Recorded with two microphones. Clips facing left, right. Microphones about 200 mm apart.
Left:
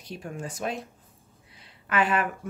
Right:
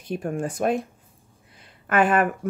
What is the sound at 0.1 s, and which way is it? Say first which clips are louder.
Speech: right 9 dB; 55° right (ahead or behind).